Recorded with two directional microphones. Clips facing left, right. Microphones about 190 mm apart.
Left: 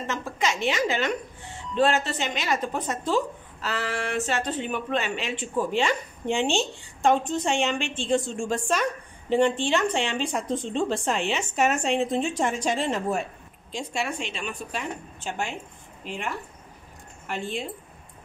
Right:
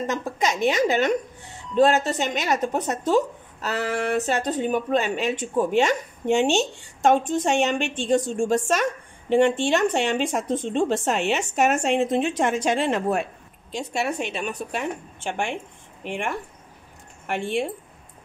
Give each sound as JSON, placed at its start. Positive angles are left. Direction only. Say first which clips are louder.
{"t": 0.4, "sound": "a woman's voice", "louder": "right 4 dB", "side_deg": -40}
{"t": 15.2, "sound": "speech", "louder": "right 4 dB", "side_deg": -80}